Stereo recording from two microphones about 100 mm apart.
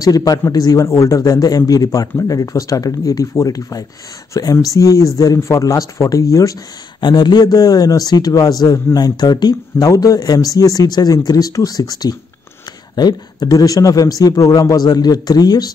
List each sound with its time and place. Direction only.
0.0 s a man's voice: 40° left (ahead or behind)
7.0 s a man's voice: 50° left (ahead or behind)